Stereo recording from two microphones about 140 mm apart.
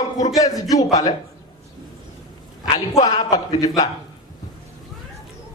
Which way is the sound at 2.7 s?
30° left (ahead or behind).